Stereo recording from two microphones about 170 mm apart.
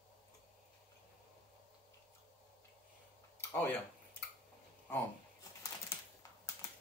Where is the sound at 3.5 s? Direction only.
10° left (ahead or behind).